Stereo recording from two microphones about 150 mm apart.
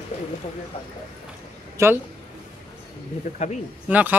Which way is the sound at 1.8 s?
20° right (ahead or behind).